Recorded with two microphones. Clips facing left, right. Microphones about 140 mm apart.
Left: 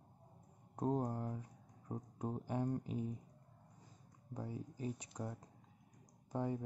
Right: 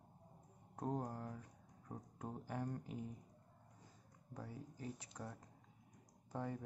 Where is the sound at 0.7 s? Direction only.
20° left (ahead or behind).